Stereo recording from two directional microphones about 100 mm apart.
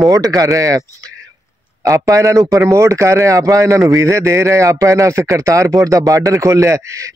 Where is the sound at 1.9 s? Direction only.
30° right (ahead or behind).